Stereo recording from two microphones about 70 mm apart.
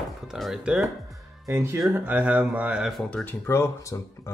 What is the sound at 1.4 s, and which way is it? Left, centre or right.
Speech, right.